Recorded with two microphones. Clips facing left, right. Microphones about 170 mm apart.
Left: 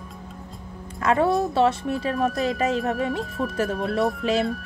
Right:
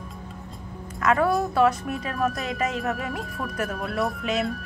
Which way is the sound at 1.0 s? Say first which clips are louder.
Left 1 dB; 30° left (ahead or behind).